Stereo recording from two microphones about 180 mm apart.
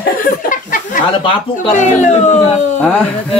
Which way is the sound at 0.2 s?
50° left (ahead or behind).